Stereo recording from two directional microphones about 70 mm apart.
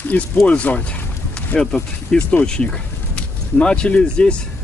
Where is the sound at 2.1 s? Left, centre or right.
Centre.